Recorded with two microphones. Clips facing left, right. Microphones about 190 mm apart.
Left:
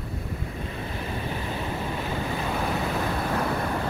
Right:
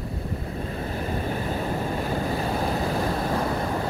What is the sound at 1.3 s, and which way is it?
Waves, 45° right (ahead or behind).